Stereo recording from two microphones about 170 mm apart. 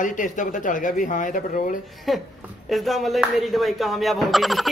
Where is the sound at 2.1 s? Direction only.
Centre (ahead or behind).